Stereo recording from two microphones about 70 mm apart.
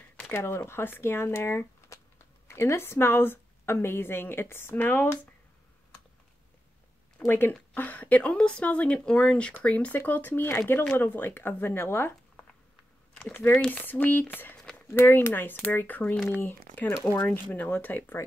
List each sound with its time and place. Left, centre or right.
0.3 s a woman's voice: left
7.2 s a woman's voice: left
13.7 s speech: left
16.3 s a woman's voice: left
17.5 s speech: left